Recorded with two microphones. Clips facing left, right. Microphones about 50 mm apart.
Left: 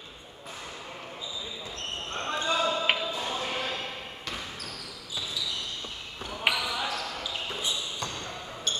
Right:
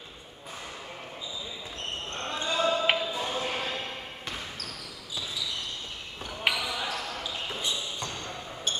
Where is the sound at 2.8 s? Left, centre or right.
Centre.